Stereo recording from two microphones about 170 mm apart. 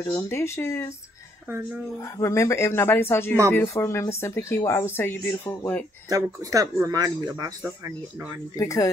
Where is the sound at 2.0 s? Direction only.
20° left (ahead or behind).